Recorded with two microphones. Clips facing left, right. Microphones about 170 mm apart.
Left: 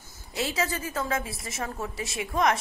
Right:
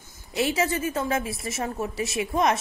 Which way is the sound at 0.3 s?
25° right (ahead or behind).